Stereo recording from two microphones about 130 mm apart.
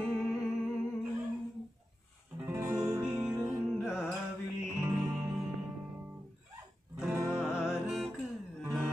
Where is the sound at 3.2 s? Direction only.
10° right (ahead or behind).